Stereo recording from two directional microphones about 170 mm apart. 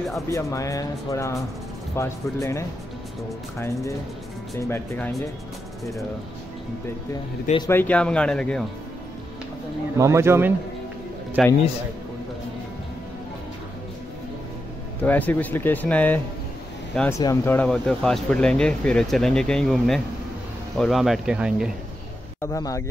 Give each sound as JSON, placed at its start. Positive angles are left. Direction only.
{"t": 0.3, "sound": "speech", "side_deg": 20}
{"t": 7.7, "sound": "speech", "side_deg": 10}
{"t": 9.9, "sound": "speech", "side_deg": -15}
{"t": 11.4, "sound": "speech", "side_deg": -5}
{"t": 15.0, "sound": "speech", "side_deg": 10}
{"t": 17.2, "sound": "speech", "side_deg": 20}
{"t": 17.6, "sound": "speech", "side_deg": 5}
{"t": 22.4, "sound": "speech", "side_deg": 20}